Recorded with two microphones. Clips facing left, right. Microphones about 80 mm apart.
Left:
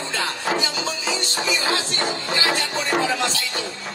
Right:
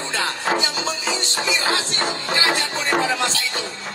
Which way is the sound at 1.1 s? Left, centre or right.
Right.